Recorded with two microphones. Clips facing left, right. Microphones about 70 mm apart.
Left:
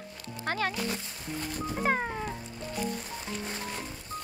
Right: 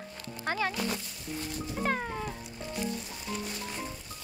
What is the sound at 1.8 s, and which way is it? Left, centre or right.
Cat, centre.